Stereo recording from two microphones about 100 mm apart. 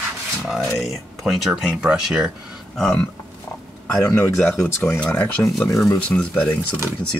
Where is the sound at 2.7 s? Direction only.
10° left (ahead or behind).